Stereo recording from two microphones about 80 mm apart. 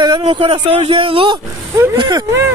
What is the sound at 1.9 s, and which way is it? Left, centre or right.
Speech, right.